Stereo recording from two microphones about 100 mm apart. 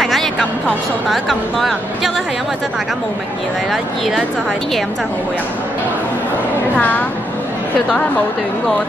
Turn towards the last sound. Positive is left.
turn(degrees=15)  # may be behind; listen again after turning